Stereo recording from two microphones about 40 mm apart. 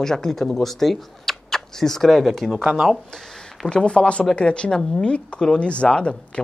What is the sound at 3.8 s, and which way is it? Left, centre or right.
Speech, left.